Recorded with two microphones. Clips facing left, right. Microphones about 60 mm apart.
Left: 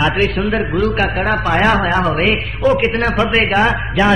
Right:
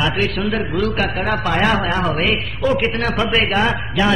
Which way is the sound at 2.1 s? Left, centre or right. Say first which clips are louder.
Left 3 dB; centre.